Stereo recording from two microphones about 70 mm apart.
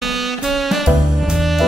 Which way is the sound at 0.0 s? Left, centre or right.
Centre.